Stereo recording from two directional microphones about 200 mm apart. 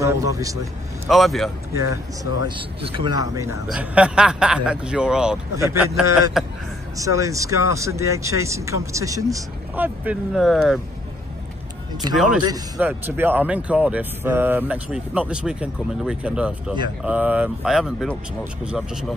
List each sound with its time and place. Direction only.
0.0 s speech: 15° right (ahead or behind)
1.0 s speech: centre (ahead or behind)
1.7 s a man's voice: 15° right (ahead or behind)
3.6 s speech: 5° right (ahead or behind)
5.6 s speech: 15° right (ahead or behind)
6.4 s speech: centre (ahead or behind)
7.0 s speech: 15° right (ahead or behind); by 10.8 s centre (ahead or behind)
12.0 s a man's voice: 20° right (ahead or behind)
12.7 s speech: 10° right (ahead or behind)